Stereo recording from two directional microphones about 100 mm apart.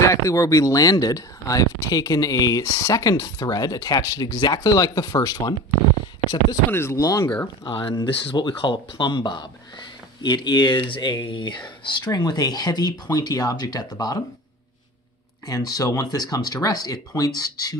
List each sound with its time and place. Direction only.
0.1 s speech: 35° left (ahead or behind)
6.7 s speech: 25° left (ahead or behind)
7.0 s speech: 35° left (ahead or behind)
7.6 s speech: 55° left (ahead or behind)
15.4 s speech: 40° left (ahead or behind)